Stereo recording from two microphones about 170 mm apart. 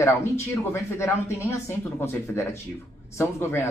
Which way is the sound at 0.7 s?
15° left (ahead or behind).